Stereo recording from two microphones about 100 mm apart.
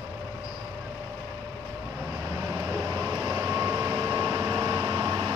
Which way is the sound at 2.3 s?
30° right (ahead or behind).